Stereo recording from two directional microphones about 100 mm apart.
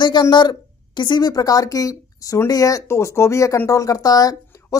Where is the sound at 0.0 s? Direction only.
50° left (ahead or behind).